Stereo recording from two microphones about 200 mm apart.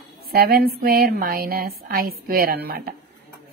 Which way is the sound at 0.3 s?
50° right (ahead or behind).